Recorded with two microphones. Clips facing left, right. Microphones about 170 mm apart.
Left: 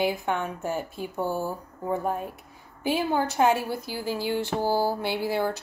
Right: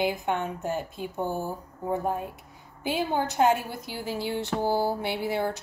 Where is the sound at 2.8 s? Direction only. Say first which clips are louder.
Left 2 dB; 20° right (ahead or behind).